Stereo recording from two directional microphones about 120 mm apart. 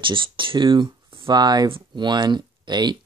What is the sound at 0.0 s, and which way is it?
Speech, 45° right (ahead or behind).